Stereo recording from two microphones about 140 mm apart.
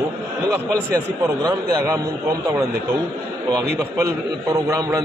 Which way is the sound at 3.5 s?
20° right (ahead or behind).